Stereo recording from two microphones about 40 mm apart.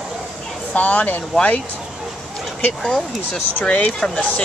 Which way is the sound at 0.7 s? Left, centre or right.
Left.